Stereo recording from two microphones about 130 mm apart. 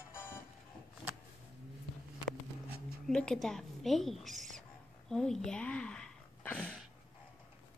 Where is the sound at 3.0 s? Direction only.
5° left (ahead or behind).